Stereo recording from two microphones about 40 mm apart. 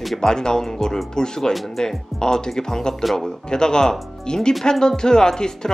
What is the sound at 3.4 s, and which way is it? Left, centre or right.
Speech, centre.